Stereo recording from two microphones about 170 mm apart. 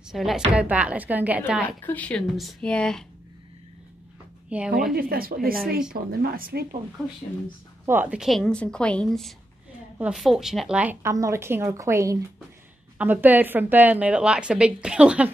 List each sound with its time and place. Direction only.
0.1 s a woman's voice: centre (ahead or behind)
1.9 s speech: 10° left (ahead or behind)
4.5 s a woman's voice: 5° right (ahead or behind)
4.9 s a woman's voice: 60° right (ahead or behind)
7.8 s a woman's voice: 10° right (ahead or behind)